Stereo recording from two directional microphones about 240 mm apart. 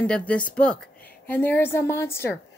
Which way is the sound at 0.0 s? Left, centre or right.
Centre.